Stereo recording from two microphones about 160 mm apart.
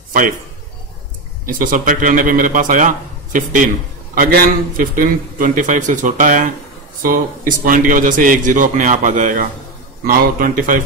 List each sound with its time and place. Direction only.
1.4 s a man's voice: 55° right (ahead or behind)